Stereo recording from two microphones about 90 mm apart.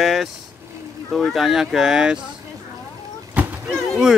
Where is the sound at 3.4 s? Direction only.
15° right (ahead or behind).